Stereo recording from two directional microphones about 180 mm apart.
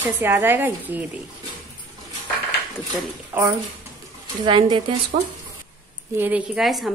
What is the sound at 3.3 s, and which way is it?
Speech, 20° right (ahead or behind).